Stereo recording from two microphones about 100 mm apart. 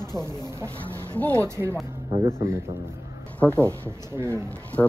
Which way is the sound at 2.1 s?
35° right (ahead or behind).